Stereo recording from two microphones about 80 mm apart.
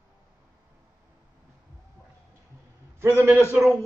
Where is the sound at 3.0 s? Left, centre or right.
Right.